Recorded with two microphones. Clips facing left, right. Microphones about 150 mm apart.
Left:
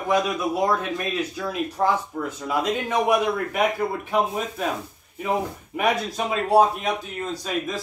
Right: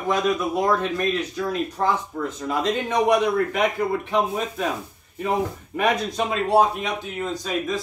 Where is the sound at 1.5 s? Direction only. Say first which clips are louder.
Left 1 dB; 5° left (ahead or behind).